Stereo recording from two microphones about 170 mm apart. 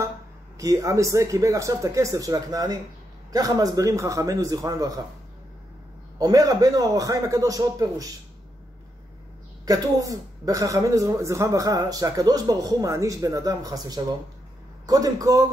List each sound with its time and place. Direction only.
0.6 s a woman's voice: 20° right (ahead or behind)
6.1 s a woman's voice: 20° right (ahead or behind)
9.7 s a woman's voice: 20° right (ahead or behind)